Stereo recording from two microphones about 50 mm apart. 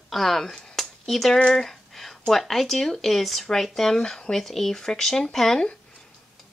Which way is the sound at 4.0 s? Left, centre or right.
Centre.